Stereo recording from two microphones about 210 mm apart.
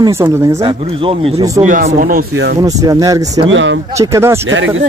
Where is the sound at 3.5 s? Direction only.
65° right (ahead or behind).